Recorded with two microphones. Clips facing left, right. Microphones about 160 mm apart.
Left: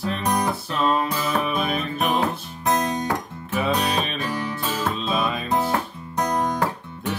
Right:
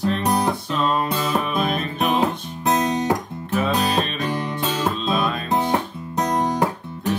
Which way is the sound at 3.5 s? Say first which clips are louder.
Right 2 dB; centre (ahead or behind).